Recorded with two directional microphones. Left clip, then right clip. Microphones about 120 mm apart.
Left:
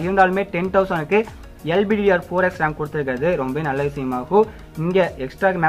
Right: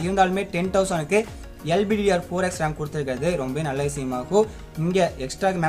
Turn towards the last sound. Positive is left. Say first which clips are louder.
# left 5 dB
turn(degrees=-40)  # may be behind; listen again after turning